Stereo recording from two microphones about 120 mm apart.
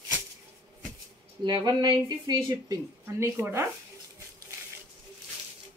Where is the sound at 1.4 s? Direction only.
35° right (ahead or behind).